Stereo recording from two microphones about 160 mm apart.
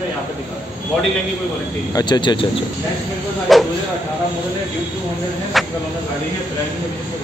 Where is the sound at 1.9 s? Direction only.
25° left (ahead or behind).